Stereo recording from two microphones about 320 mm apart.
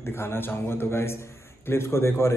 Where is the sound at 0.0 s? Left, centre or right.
Centre.